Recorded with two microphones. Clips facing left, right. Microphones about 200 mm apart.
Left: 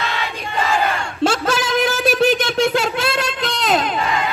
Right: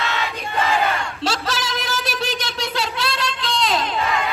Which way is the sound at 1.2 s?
50° left (ahead or behind).